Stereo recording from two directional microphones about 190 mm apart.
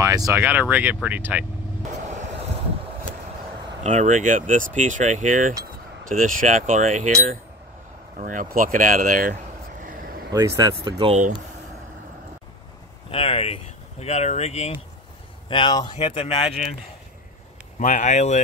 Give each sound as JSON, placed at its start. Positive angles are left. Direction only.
{"t": 0.0, "sound": "speech", "side_deg": -15}
{"t": 3.8, "sound": "speech", "side_deg": -40}
{"t": 10.3, "sound": "speech", "side_deg": -20}
{"t": 13.1, "sound": "speech", "side_deg": 30}
{"t": 17.7, "sound": "speech", "side_deg": 40}